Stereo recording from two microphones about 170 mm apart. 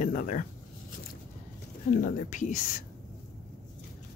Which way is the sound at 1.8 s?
50° left (ahead or behind).